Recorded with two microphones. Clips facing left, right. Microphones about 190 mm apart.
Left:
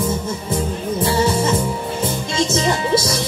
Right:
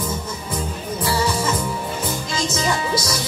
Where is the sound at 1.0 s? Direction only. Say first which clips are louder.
Left 4 dB; 25° left (ahead or behind).